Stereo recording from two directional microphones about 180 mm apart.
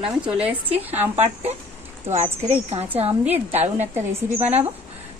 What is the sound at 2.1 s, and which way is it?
Speech, 40° right (ahead or behind).